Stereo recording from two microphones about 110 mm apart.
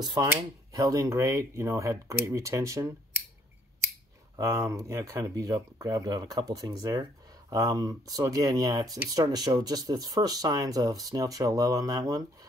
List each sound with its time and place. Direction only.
0.0 s speech: 40° right (ahead or behind)
4.4 s speech: 30° right (ahead or behind)